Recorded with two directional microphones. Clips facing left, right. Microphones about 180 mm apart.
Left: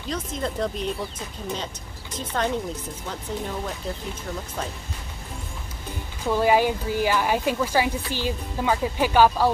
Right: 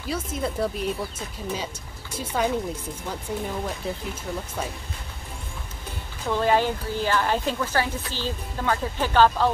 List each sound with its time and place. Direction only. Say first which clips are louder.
0.1 s speech: right 1 dB; 5° right (ahead or behind)
2.1 s speech: right 1 dB; 10° right (ahead or behind)
6.2 s speech: left 2 dB; 10° left (ahead or behind)